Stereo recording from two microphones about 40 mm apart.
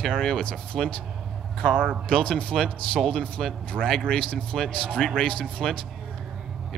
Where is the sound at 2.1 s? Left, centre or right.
Left.